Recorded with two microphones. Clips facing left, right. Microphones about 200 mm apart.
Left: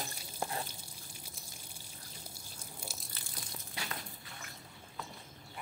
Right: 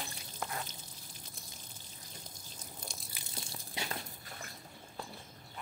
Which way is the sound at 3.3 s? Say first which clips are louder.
Right 3 dB; 25° right (ahead or behind).